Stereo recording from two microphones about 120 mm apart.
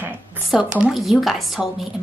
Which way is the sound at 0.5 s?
5° right (ahead or behind).